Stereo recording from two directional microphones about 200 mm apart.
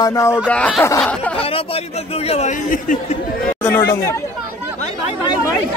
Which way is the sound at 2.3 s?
35° left (ahead or behind).